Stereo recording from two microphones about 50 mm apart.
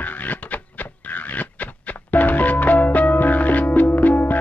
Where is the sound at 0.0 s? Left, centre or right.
Left.